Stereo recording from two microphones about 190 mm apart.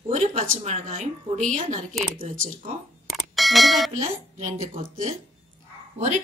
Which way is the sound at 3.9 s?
40° right (ahead or behind).